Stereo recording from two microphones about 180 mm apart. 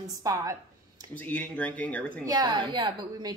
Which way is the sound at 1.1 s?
10° left (ahead or behind).